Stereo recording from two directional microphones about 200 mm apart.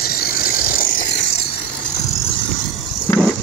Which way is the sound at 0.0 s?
50° left (ahead or behind).